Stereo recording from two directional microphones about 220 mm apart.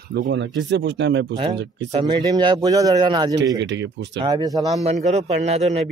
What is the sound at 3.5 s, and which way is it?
Speech, 55° right (ahead or behind).